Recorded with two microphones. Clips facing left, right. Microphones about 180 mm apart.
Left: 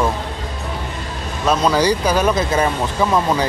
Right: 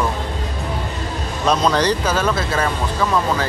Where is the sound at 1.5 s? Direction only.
10° left (ahead or behind).